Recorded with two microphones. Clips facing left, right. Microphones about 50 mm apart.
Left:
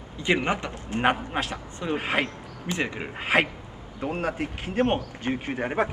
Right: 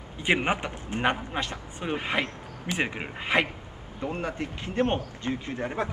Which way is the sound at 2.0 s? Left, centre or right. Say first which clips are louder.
Left 2 dB; left.